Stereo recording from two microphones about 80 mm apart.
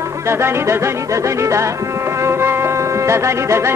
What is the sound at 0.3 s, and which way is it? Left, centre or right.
Speech, right.